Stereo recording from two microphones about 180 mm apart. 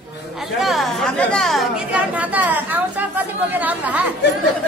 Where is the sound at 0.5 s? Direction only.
Centre (ahead or behind).